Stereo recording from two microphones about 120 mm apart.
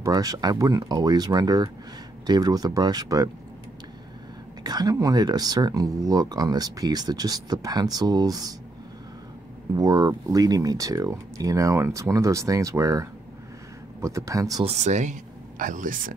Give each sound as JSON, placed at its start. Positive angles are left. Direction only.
{"t": 0.0, "sound": "speech", "side_deg": -30}
{"t": 4.6, "sound": "speech", "side_deg": -35}
{"t": 9.8, "sound": "speech", "side_deg": -30}
{"t": 14.6, "sound": "speech", "side_deg": -65}
{"t": 15.6, "sound": "speech", "side_deg": -90}